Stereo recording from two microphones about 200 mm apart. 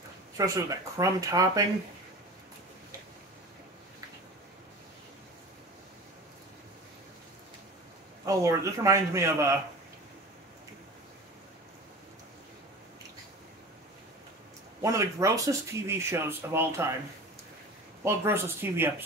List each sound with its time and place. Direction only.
0.4 s speech: 15° right (ahead or behind)
8.3 s speech: 15° right (ahead or behind)
14.8 s speech: 15° right (ahead or behind)
18.0 s speech: 10° right (ahead or behind)